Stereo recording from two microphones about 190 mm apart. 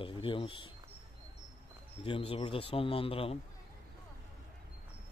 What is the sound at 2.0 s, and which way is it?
Speech, 30° left (ahead or behind).